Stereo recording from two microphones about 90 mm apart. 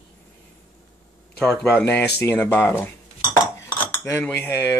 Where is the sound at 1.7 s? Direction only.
20° left (ahead or behind).